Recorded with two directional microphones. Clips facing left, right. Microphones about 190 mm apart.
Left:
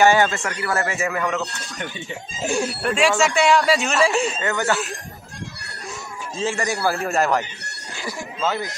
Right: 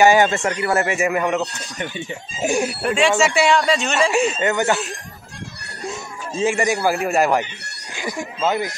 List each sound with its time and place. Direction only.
0.0 s speech: 15° right (ahead or behind)
2.7 s speech: centre (ahead or behind)
4.4 s speech: 20° right (ahead or behind)
5.9 s a sound: 15° right (ahead or behind)
8.5 s speech: 20° right (ahead or behind)